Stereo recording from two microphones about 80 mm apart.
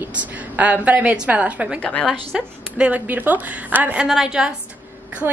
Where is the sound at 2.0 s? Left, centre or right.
Centre.